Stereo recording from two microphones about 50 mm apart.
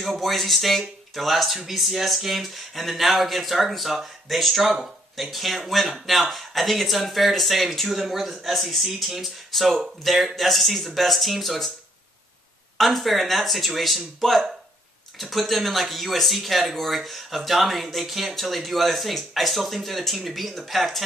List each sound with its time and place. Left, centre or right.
0.0 s speech: centre
12.7 s speech: centre